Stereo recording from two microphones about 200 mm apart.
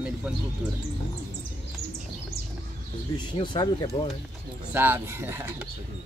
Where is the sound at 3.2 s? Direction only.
25° left (ahead or behind).